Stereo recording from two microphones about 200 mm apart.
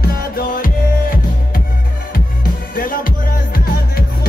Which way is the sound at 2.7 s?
45° left (ahead or behind).